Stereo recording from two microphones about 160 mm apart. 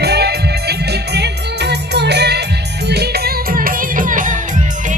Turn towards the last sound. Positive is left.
turn(degrees=-50)  # may be behind; listen again after turning